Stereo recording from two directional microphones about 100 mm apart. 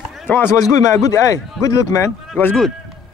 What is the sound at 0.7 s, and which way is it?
Speech, 35° left (ahead or behind).